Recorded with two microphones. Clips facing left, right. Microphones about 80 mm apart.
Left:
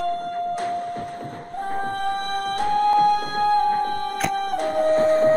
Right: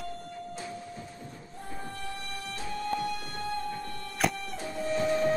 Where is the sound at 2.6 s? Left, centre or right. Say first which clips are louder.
Left 15 dB; left.